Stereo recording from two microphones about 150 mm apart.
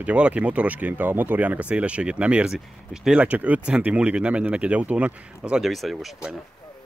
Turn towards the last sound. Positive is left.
turn(degrees=0)  # may be behind; listen again after turning